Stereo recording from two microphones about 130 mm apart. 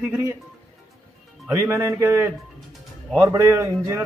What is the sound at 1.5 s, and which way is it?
Speech, 20° right (ahead or behind).